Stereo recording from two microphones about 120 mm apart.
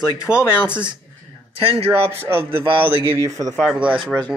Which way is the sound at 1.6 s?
55° right (ahead or behind).